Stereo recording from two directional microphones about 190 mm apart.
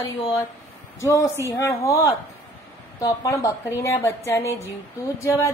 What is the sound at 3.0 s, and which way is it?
A woman's voice, 15° left (ahead or behind).